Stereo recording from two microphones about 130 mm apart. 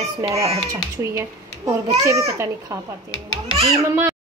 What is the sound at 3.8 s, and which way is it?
Speech, 25° right (ahead or behind).